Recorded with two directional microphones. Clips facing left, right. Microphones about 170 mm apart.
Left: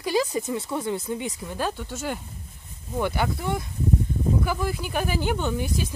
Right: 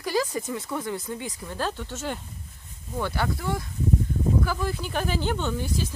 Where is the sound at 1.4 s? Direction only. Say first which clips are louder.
Left 1 dB; 10° left (ahead or behind).